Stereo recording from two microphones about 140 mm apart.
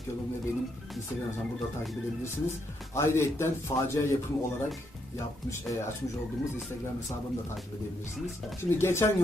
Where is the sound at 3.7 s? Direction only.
35° left (ahead or behind).